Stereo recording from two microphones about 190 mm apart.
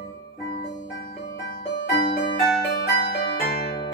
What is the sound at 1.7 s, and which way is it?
Music, 65° left (ahead or behind).